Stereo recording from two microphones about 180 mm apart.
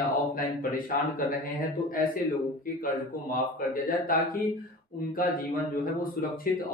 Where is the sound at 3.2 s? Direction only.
55° left (ahead or behind).